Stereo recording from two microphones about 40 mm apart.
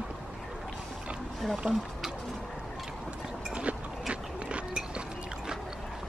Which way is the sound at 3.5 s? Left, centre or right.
Right.